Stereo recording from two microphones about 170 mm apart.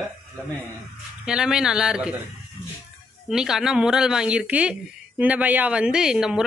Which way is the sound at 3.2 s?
Centre (ahead or behind).